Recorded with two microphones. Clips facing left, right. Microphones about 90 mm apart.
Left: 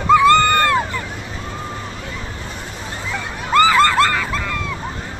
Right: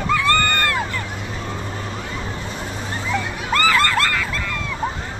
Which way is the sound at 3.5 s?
20° left (ahead or behind).